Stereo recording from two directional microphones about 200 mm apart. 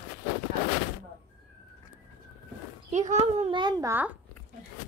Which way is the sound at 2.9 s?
35° right (ahead or behind).